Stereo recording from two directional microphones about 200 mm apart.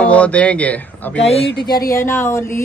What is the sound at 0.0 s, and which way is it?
Speech, 5° left (ahead or behind).